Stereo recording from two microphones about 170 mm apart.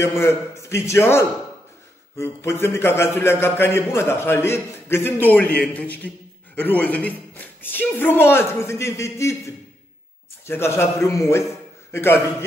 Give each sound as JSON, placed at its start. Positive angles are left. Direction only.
{"t": 0.0, "sound": "a man's voice", "side_deg": 15}
{"t": 10.4, "sound": "a man's voice", "side_deg": 15}